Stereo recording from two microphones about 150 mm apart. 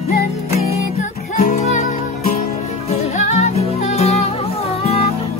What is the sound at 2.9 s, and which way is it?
Music, 50° left (ahead or behind).